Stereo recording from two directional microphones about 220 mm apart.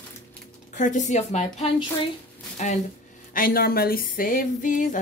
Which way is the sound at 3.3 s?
40° left (ahead or behind).